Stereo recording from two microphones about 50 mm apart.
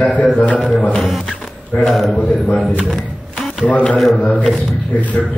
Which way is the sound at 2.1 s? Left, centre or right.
Left.